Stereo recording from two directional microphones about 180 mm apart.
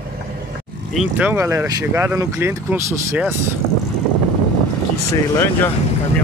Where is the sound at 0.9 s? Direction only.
10° right (ahead or behind).